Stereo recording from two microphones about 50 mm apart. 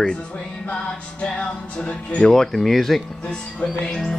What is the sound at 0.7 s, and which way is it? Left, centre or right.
Music, left.